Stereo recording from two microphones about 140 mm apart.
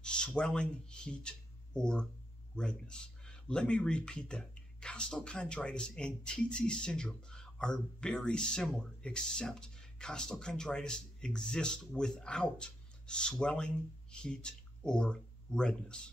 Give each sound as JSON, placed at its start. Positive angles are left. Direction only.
{"t": 0.0, "sound": "speech", "side_deg": 5}